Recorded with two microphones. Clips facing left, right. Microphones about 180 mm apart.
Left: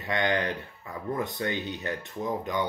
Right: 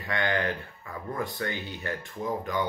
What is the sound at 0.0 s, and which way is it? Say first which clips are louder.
Speech: left 1 dB; 20° left (ahead or behind).